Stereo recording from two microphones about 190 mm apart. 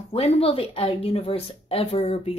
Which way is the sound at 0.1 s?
30° left (ahead or behind).